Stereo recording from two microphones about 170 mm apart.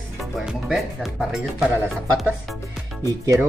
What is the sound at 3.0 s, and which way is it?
Speech, 20° right (ahead or behind).